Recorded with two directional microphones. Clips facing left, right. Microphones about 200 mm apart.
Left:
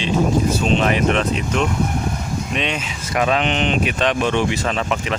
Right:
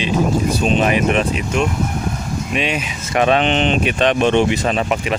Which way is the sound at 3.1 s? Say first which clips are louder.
Right 4 dB; 25° right (ahead or behind).